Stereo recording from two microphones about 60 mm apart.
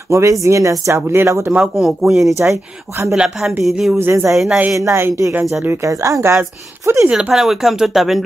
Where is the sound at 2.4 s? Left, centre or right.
Right.